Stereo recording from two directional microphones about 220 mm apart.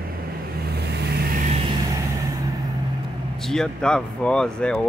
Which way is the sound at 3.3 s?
Centre (ahead or behind).